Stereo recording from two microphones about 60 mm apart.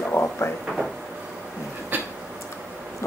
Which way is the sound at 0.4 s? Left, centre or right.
Left.